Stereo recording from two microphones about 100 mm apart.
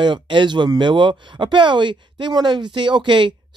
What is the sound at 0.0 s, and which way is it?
Speech, 50° right (ahead or behind).